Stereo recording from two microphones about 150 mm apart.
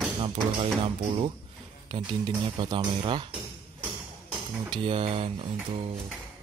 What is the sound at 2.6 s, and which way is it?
Speech, 35° right (ahead or behind).